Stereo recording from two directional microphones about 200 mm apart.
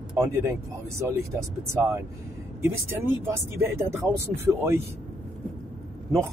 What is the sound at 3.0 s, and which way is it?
Speech, 10° right (ahead or behind).